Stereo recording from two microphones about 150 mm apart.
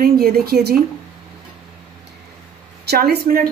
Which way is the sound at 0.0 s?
85° right.